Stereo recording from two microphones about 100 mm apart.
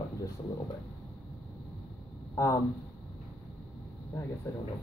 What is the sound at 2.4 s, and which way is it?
Speech, 30° left (ahead or behind).